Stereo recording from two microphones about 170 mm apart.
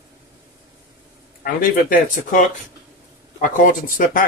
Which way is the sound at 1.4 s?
55° left (ahead or behind).